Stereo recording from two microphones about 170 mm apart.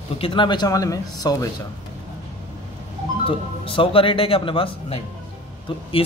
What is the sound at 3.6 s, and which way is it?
Speech, 30° left (ahead or behind).